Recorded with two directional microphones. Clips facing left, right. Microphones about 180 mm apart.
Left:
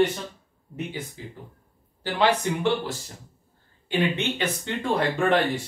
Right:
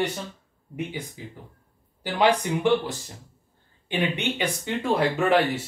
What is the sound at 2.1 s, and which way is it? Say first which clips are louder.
Speech: right 1 dB; 15° right (ahead or behind).